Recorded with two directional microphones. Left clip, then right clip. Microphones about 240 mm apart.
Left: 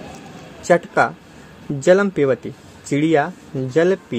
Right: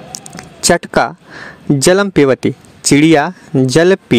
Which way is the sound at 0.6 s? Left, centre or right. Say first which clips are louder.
Right 4 dB; right.